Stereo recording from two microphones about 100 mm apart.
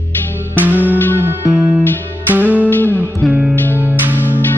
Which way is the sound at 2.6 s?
15° left (ahead or behind).